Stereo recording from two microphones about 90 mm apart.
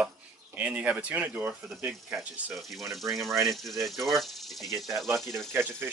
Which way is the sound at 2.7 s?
Centre (ahead or behind).